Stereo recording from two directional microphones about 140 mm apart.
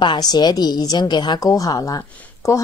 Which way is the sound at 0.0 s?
30° left (ahead or behind).